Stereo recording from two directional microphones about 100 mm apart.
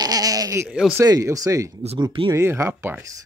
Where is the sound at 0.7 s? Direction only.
10° right (ahead or behind).